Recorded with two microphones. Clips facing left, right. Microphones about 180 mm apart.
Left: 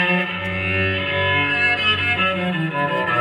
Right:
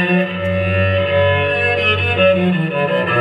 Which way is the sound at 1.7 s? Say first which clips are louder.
Right 9 dB; 65° right (ahead or behind).